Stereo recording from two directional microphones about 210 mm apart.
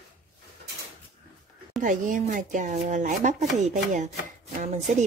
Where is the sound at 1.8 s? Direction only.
40° right (ahead or behind).